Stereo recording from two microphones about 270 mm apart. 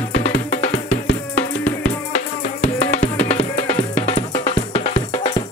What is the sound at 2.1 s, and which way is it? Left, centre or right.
Music, left.